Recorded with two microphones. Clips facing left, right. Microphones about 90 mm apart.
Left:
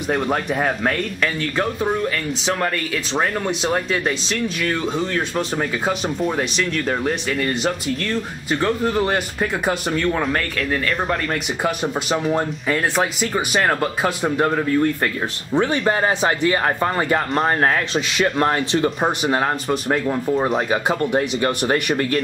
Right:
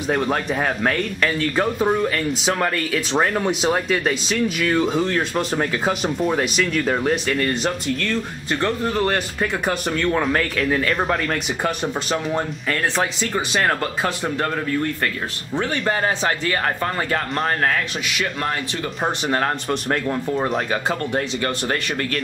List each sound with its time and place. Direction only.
0.1 s speech: centre (ahead or behind); by 18.9 s 30° left (ahead or behind)
18.9 s speech: 10° left (ahead or behind)
20.7 s speech: 15° left (ahead or behind)